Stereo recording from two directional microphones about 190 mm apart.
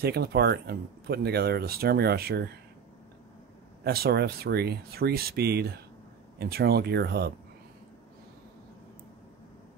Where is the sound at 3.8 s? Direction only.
55° right (ahead or behind).